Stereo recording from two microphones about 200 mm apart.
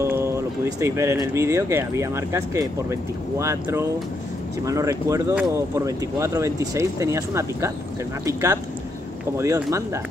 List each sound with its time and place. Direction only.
0.0 s speech: 15° right (ahead or behind)